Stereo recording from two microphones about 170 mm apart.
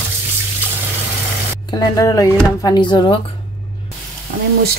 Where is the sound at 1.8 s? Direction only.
20° left (ahead or behind).